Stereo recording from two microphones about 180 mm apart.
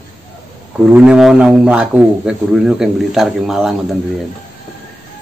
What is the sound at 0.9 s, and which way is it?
A man's voice, 5° right (ahead or behind).